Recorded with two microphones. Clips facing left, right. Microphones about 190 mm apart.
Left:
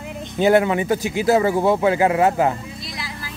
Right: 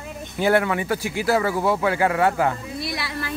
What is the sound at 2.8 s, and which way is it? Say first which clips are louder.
Music: right 4 dB; 70° right (ahead or behind).